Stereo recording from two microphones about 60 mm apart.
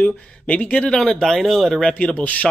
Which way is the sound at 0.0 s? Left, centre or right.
Left.